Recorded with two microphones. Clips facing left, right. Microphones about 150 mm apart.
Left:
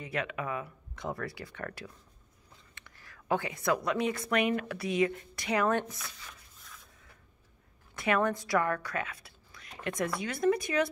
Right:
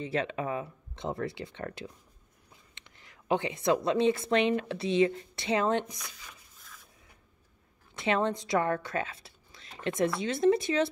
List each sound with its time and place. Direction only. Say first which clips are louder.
0.0 s a woman's voice: right 4 dB; 30° right (ahead or behind)
7.9 s a woman's voice: even; 25° right (ahead or behind)